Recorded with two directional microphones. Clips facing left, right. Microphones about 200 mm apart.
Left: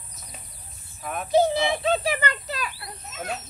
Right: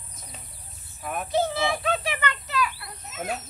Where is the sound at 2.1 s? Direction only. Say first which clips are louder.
Left 1 dB; 35° left (ahead or behind).